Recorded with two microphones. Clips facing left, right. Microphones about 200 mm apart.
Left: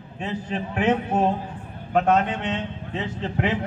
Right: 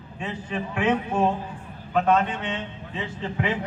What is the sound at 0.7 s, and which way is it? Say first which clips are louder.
A man's voice: left 2 dB; 40° left (ahead or behind).